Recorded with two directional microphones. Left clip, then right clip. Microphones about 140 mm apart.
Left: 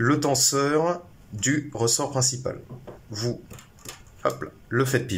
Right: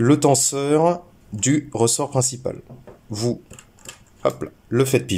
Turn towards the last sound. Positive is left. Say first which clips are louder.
# right 5 dB
turn(degrees=-20)  # may be behind; listen again after turning